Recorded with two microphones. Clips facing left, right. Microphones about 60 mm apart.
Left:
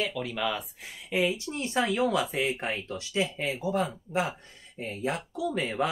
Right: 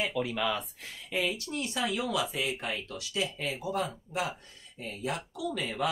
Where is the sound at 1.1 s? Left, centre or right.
Left.